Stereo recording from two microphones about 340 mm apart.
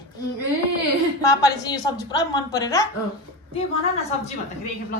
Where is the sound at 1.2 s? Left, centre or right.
Centre.